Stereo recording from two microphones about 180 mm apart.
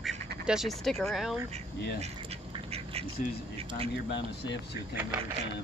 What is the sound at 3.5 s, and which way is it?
Speech, 35° right (ahead or behind).